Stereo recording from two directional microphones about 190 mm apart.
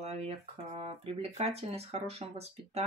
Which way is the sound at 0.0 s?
35° right (ahead or behind).